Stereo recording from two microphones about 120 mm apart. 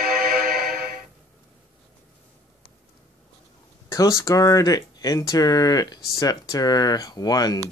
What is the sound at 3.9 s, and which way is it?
Speech, 25° left (ahead or behind).